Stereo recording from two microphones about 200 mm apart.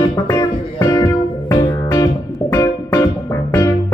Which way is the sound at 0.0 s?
20° left (ahead or behind).